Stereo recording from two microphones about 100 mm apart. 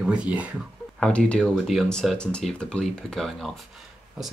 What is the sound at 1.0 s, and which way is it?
Speech, 10° left (ahead or behind).